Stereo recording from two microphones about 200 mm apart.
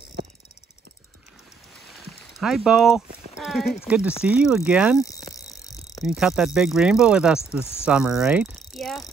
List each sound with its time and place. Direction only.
2.3 s speech: centre (ahead or behind)
5.0 s a sound: 15° left (ahead or behind)
6.0 s speech: centre (ahead or behind)
7.8 s cricket: 5° right (ahead or behind)